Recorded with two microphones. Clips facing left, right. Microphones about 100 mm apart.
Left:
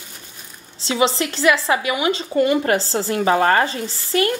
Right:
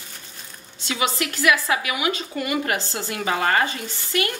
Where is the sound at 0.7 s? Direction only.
30° left (ahead or behind).